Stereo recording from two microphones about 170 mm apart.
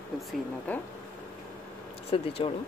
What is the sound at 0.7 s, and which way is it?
Speech, 10° left (ahead or behind).